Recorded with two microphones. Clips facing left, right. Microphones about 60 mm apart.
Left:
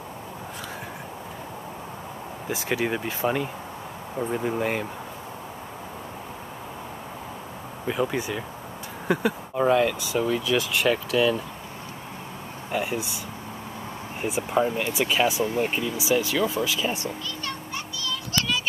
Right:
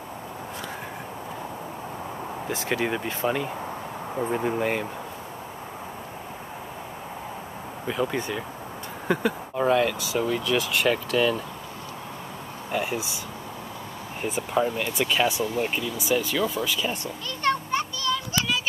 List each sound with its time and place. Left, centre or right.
2.5 s speech: centre
4.2 s speech: centre
7.9 s speech: centre
12.7 s speech: centre
14.2 s speech: centre
17.4 s children playing: right